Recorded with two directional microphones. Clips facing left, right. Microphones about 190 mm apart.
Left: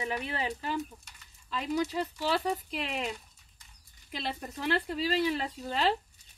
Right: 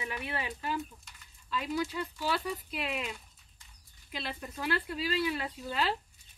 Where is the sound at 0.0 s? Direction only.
35° left (ahead or behind).